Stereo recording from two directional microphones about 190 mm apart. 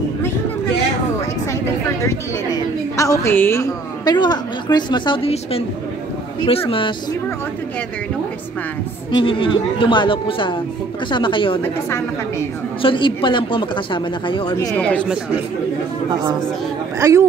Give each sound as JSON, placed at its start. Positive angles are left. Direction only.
{"t": 3.0, "sound": "a woman's voice", "side_deg": 15}
{"t": 9.1, "sound": "a woman's voice", "side_deg": 25}
{"t": 11.6, "sound": "a woman's voice", "side_deg": 15}
{"t": 12.8, "sound": "a woman's voice", "side_deg": 25}
{"t": 14.7, "sound": "a woman's voice", "side_deg": 5}
{"t": 17.0, "sound": "a man's voice", "side_deg": -15}